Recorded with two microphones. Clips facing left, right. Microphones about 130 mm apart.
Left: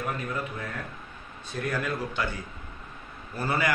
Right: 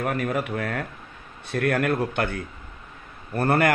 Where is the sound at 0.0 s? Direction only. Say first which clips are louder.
Right 6 dB; 70° right (ahead or behind).